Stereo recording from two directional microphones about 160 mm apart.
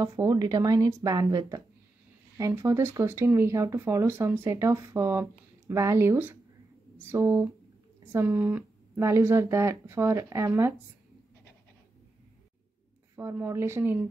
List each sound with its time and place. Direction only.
0.0 s a woman's voice: 20° right (ahead or behind)
13.1 s speech: 15° right (ahead or behind)